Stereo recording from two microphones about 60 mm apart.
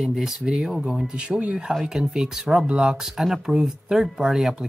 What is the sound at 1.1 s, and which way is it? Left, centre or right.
Speech, centre.